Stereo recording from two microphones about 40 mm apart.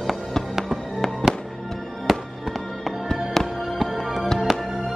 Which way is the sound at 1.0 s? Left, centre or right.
Centre.